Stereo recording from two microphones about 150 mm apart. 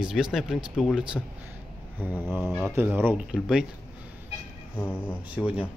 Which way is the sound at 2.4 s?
5° left (ahead or behind).